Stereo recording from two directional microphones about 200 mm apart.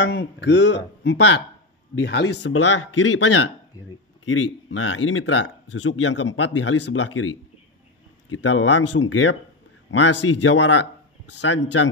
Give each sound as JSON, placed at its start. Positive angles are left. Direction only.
{"t": 0.4, "sound": "speech", "side_deg": 55}